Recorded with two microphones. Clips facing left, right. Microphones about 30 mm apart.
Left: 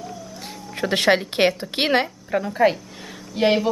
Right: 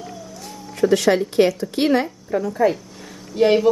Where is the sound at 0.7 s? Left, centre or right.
Left.